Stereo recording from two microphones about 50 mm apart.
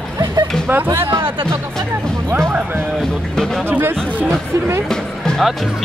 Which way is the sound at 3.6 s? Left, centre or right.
Right.